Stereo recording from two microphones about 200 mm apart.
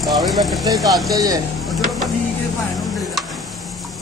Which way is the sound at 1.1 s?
20° right (ahead or behind).